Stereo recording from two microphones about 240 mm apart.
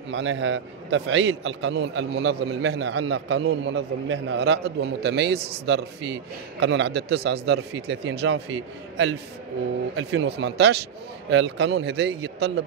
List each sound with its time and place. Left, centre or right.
0.1 s a man's voice: right